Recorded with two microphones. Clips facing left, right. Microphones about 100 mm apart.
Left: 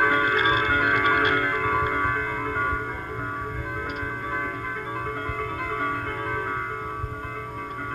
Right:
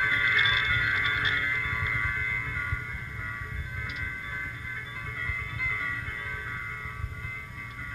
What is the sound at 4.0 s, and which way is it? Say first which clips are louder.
Music: left 9 dB; 55° left (ahead or behind).